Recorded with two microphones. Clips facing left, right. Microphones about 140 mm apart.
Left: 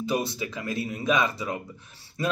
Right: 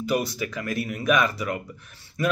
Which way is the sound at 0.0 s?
25° left (ahead or behind).